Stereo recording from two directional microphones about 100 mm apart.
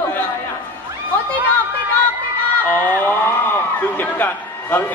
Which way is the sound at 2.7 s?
20° left (ahead or behind).